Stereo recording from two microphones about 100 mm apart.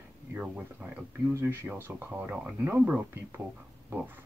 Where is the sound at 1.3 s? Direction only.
25° right (ahead or behind).